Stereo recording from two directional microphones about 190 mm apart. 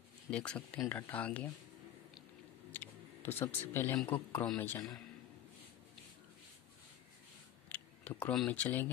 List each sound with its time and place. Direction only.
0.3 s speech: 5° left (ahead or behind)
2.7 s speech: 10° left (ahead or behind)
7.7 s tick: 10° left (ahead or behind)